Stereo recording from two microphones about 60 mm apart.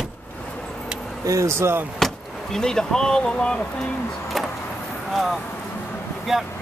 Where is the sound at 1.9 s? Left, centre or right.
Centre.